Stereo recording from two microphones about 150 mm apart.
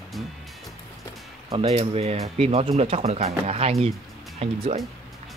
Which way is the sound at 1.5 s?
40° right (ahead or behind).